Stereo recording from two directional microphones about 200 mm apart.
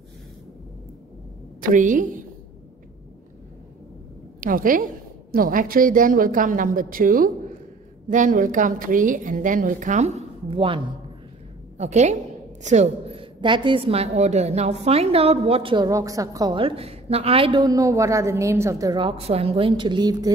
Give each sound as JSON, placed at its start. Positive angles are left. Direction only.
{"t": 1.6, "sound": "a woman's voice", "side_deg": -40}
{"t": 4.4, "sound": "a woman's voice", "side_deg": -45}
{"t": 11.8, "sound": "a woman's voice", "side_deg": -35}